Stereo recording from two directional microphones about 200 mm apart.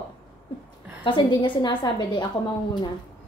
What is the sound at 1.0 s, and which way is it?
A woman's voice, 25° left (ahead or behind).